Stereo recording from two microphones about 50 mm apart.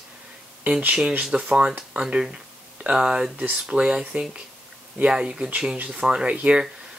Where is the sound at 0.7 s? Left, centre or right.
Right.